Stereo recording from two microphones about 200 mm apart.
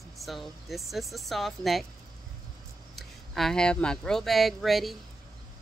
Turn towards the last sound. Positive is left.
turn(degrees=0)  # may be behind; listen again after turning